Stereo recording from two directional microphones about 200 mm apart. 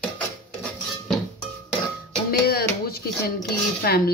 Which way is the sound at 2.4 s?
50° left (ahead or behind).